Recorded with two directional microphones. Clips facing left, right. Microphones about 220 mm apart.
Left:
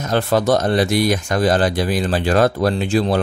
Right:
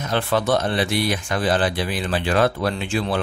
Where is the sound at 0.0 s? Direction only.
40° left (ahead or behind).